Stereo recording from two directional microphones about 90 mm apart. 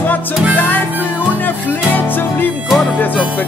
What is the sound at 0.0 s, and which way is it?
Music, 20° left (ahead or behind).